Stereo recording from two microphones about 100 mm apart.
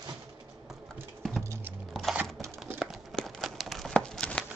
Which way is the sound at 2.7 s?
25° right (ahead or behind).